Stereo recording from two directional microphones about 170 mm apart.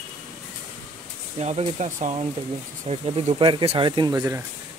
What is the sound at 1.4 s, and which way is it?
Speech, 40° right (ahead or behind).